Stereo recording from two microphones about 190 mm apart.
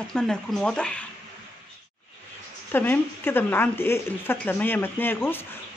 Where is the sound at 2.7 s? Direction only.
10° left (ahead or behind).